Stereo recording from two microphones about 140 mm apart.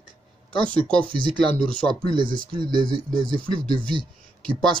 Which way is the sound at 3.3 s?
5° left (ahead or behind).